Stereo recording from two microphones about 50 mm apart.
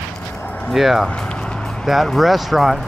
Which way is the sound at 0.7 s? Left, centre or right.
Centre.